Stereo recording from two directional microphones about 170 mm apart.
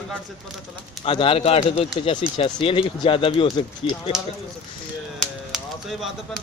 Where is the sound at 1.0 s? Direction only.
30° left (ahead or behind).